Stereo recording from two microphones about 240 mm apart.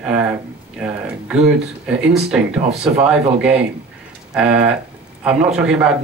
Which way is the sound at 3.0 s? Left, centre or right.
Centre.